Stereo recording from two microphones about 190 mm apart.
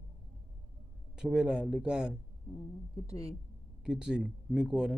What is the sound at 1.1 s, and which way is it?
Speech, 5° right (ahead or behind).